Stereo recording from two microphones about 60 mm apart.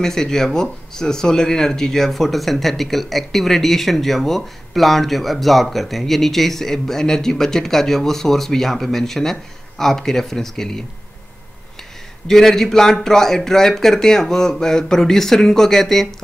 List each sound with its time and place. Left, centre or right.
0.0 s speech: centre
12.3 s speech: centre